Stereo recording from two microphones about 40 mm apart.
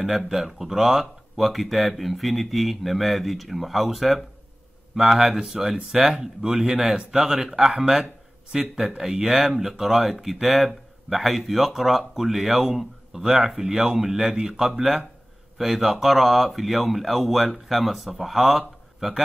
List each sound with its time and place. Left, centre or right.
0.0 s speech: centre
5.4 s speech: centre
7.9 s a sound: centre
8.7 s speech: centre